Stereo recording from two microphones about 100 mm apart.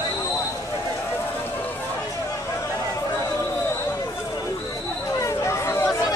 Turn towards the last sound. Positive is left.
turn(degrees=30)  # may be behind; listen again after turning